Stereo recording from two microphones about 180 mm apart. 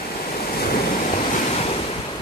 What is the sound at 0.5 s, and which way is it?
Waves, 55° left (ahead or behind).